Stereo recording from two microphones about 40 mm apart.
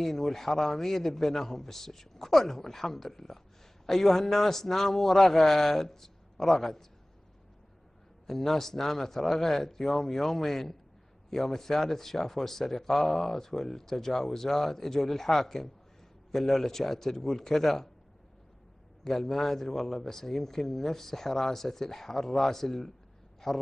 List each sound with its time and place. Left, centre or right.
0.0 s speech: centre
8.3 s speech: centre
19.0 s a man's voice: centre